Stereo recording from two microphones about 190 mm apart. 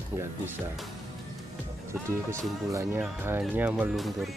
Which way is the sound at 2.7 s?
15° right (ahead or behind).